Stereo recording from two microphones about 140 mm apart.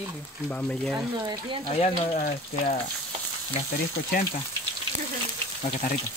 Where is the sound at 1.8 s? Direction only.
50° left (ahead or behind).